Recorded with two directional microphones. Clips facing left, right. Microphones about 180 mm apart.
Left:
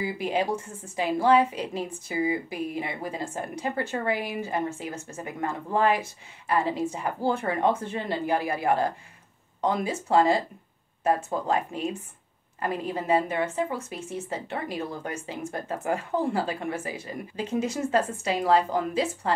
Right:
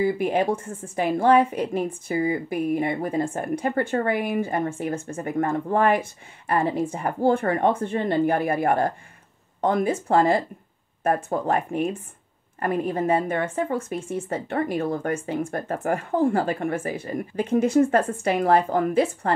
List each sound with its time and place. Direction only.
0.0 s a woman's voice: 55° right (ahead or behind)